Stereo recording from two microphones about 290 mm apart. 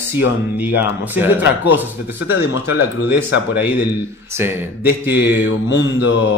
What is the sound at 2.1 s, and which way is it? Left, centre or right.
Speech, left.